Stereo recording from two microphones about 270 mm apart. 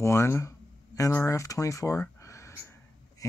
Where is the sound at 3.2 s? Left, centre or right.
Centre.